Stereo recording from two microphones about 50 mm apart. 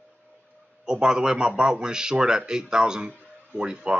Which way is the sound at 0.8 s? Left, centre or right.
Centre.